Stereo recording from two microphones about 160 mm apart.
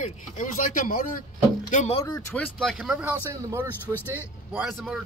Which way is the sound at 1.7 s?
45° left (ahead or behind).